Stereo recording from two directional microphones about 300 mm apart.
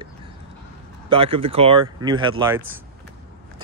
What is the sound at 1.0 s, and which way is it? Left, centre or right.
Speech, centre.